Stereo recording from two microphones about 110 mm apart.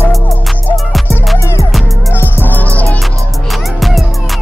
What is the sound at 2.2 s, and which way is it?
Music, 20° left (ahead or behind).